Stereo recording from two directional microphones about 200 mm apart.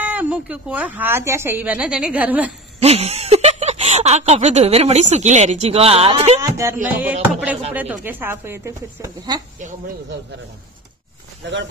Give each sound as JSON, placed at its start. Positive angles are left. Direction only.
{"t": 0.0, "sound": "speech", "side_deg": -10}
{"t": 2.8, "sound": "a sound", "side_deg": -30}
{"t": 4.3, "sound": "speech", "side_deg": -35}
{"t": 6.4, "sound": "speech", "side_deg": -15}